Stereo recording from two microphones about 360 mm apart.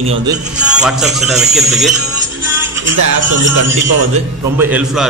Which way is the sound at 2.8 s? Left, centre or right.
Right.